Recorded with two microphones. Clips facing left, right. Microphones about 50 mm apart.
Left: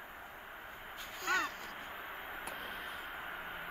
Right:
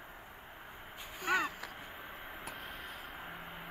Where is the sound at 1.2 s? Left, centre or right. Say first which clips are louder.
Right 2 dB; centre.